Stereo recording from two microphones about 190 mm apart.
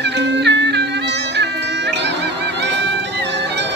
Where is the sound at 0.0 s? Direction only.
65° right (ahead or behind).